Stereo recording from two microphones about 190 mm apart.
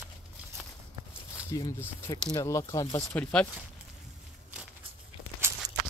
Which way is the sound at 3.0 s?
5° left (ahead or behind).